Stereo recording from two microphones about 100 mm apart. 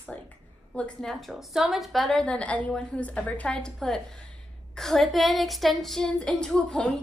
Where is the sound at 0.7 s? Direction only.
10° left (ahead or behind).